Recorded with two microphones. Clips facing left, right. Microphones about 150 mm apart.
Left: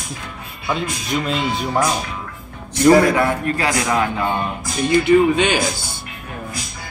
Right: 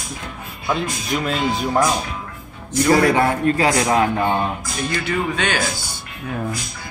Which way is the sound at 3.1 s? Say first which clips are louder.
Right 2 dB; 25° right (ahead or behind).